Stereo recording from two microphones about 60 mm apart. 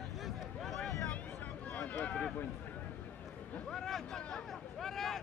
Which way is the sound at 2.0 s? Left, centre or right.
Centre.